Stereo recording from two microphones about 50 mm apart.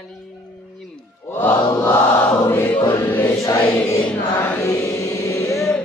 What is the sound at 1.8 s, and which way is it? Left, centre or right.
Mantra, left.